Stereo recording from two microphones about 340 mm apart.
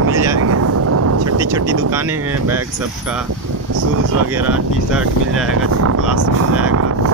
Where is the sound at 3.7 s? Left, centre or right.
Right.